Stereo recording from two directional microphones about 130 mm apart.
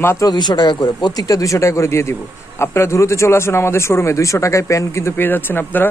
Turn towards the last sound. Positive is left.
turn(degrees=15)  # may be behind; listen again after turning